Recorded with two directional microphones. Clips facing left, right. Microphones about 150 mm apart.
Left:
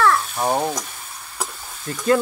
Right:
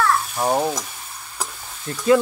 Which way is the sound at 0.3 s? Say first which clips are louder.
Right 1 dB; centre (ahead or behind).